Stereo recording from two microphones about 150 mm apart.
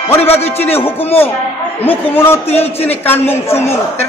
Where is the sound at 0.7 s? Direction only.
15° left (ahead or behind).